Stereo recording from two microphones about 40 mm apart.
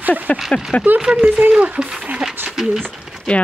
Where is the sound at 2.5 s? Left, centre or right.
Centre.